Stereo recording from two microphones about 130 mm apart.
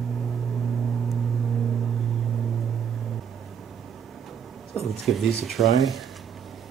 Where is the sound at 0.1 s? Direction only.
Centre (ahead or behind).